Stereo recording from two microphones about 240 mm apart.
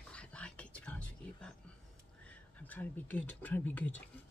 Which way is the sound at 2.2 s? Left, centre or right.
Centre.